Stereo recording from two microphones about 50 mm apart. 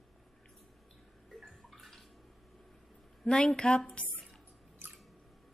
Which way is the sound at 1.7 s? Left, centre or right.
Centre.